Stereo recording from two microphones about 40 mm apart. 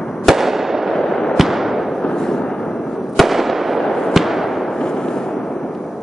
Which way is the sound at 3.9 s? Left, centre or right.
Centre.